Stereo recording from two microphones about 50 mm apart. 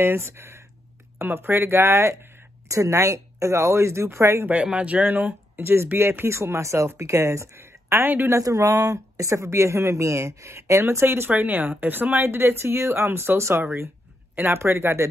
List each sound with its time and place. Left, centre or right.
0.0 s speech: right
1.1 s speech: right
2.7 s speech: right
4.6 s speech: right
5.6 s speech: right
8.0 s speech: right
8.3 s speech: right
11.3 s speech: right
13.6 s speech: right